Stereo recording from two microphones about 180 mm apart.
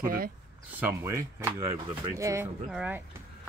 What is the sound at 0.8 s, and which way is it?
Speech, 15° right (ahead or behind).